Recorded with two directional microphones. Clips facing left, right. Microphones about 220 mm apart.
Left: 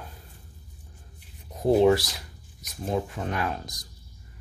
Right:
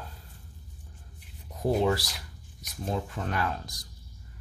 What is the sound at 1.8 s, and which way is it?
Speech, 20° left (ahead or behind).